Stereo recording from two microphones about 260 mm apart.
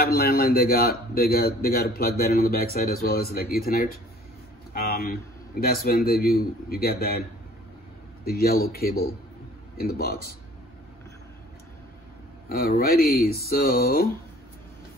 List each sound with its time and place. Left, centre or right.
0.0 s a man's voice: left
4.7 s a sound: left
5.6 s a man's voice: left
8.3 s a man's voice: left
12.4 s a man's voice: left